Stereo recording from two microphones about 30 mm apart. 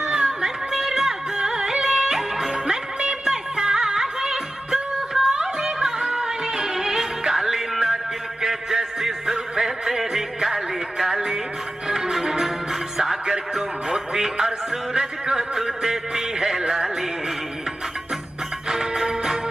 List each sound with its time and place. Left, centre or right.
0.0 s a sound: right
0.7 s music: centre
2.0 s music: centre
18.7 s music: centre